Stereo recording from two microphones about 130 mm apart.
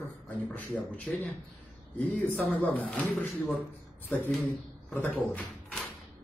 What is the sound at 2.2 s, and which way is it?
Speech, 10° left (ahead or behind).